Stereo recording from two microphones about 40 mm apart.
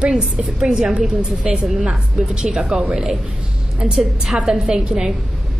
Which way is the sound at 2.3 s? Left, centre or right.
Right.